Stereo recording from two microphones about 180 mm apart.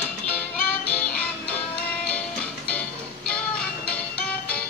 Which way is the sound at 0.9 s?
5° left (ahead or behind).